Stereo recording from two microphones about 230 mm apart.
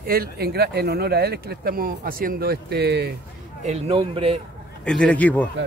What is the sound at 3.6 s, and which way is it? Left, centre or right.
Speech, right.